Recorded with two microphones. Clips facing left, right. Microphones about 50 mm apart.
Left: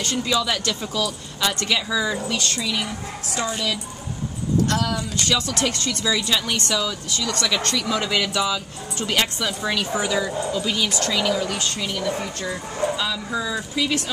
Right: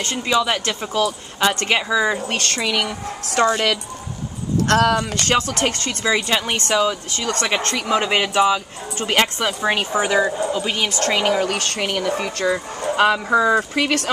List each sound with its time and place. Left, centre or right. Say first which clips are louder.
0.0 s speech: right 3 dB; right
2.2 s speech: right 3 dB; right